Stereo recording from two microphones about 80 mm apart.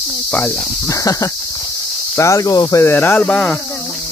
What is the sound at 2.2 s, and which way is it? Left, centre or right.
Speech, left.